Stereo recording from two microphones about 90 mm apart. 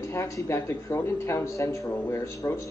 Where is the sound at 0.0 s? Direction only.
30° left (ahead or behind).